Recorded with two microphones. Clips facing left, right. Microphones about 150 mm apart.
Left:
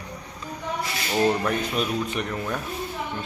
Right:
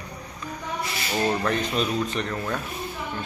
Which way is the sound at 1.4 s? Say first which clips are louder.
Even; 10° left (ahead or behind).